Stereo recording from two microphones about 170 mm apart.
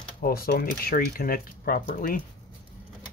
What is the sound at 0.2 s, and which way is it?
Speech, 60° left (ahead or behind).